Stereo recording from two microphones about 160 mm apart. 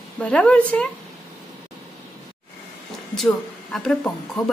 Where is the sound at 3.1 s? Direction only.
5° left (ahead or behind).